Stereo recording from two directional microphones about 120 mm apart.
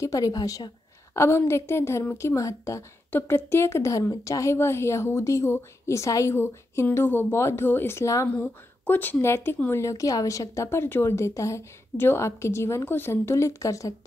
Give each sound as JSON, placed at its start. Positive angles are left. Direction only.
{"t": 0.0, "sound": "a woman's voice", "side_deg": 30}
{"t": 1.1, "sound": "a woman's voice", "side_deg": 20}
{"t": 8.3, "sound": "a woman's voice", "side_deg": 15}